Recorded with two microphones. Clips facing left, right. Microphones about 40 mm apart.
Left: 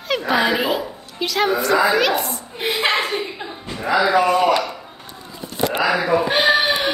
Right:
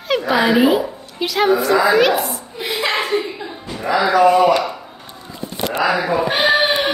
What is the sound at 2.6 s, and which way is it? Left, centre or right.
Speech, left.